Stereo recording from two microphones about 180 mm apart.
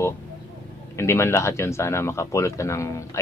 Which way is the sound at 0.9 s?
15° left (ahead or behind).